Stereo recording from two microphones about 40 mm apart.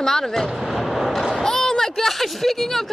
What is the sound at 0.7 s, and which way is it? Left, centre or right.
Vehicle, centre.